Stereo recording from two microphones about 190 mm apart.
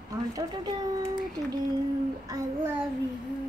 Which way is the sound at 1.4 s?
20° right (ahead or behind).